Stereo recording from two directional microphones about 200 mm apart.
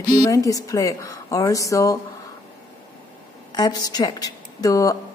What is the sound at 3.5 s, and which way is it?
Speech, 20° left (ahead or behind).